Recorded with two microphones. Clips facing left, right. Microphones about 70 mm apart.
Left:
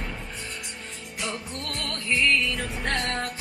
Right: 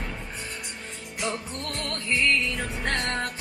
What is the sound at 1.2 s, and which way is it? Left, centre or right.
Music, right.